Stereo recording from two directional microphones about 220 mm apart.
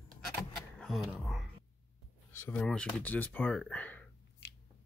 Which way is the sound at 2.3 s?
10° left (ahead or behind).